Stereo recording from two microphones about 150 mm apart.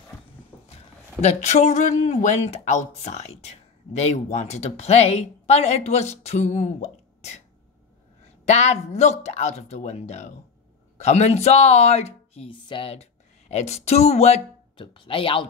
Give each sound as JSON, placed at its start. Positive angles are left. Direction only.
{"t": 0.5, "sound": "a sound", "side_deg": 15}
{"t": 1.2, "sound": "speech", "side_deg": 50}
{"t": 8.5, "sound": "speech", "side_deg": 50}
{"t": 14.8, "sound": "speech", "side_deg": 35}